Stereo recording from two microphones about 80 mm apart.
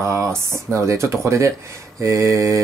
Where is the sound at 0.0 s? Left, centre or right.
Right.